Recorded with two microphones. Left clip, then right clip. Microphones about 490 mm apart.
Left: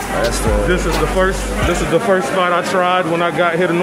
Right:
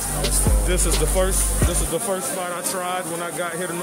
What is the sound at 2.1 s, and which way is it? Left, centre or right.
Speech, right.